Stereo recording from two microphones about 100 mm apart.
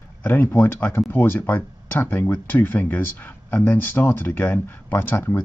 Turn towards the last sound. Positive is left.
turn(degrees=20)  # may be behind; listen again after turning